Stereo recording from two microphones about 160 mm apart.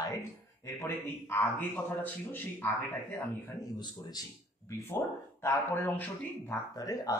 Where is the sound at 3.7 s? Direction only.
25° left (ahead or behind).